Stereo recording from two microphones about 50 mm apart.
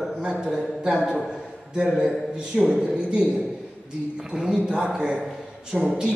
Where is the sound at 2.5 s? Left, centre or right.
Centre.